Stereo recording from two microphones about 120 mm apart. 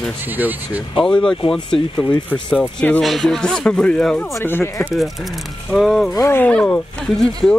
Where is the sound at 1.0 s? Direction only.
5° left (ahead or behind).